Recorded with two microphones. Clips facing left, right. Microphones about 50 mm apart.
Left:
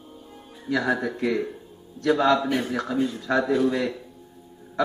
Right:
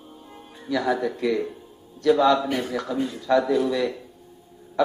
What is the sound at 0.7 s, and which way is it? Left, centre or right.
A man's voice, left.